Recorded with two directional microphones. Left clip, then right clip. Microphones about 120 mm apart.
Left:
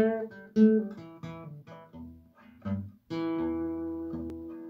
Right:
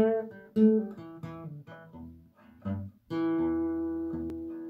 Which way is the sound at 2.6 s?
20° left (ahead or behind).